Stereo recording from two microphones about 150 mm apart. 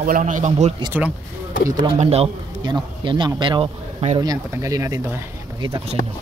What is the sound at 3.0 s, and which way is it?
Speech, 30° right (ahead or behind).